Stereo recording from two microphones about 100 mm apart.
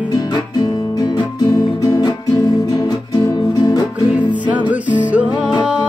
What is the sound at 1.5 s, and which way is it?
Music, 35° left (ahead or behind).